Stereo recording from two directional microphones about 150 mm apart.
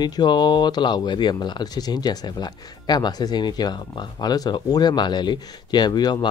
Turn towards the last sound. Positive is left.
turn(degrees=30)  # may be behind; listen again after turning